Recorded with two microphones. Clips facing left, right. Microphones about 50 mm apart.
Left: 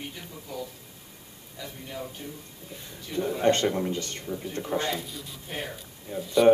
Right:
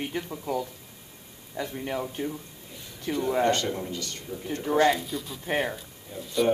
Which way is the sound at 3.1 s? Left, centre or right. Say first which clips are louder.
Right 2 dB; right.